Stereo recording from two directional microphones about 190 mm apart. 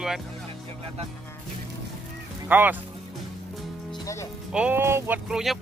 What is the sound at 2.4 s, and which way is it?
Speech, 10° right (ahead or behind).